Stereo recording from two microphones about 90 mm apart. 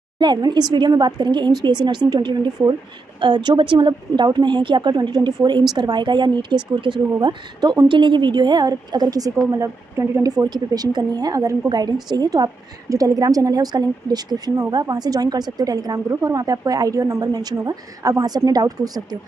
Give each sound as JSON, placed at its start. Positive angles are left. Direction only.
{"t": 0.2, "sound": "a woman's voice", "side_deg": -55}
{"t": 10.4, "sound": "a woman's voice", "side_deg": -45}